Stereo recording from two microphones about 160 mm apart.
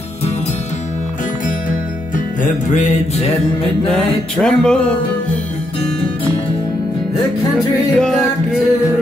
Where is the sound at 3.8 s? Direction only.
5° left (ahead or behind).